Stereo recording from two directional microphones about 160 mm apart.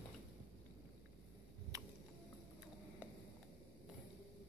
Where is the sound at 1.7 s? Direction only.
20° right (ahead or behind).